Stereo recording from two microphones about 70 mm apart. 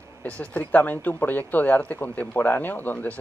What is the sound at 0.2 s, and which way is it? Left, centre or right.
Speech, left.